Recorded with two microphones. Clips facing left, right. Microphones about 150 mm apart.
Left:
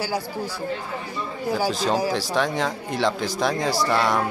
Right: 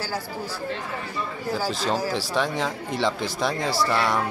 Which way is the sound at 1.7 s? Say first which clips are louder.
Left 3 dB; centre (ahead or behind).